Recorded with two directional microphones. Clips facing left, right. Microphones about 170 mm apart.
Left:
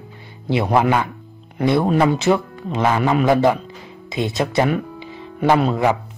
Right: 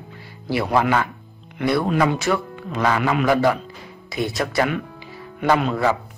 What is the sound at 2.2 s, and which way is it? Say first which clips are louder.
Speech: left 5 dB; 20° left (ahead or behind).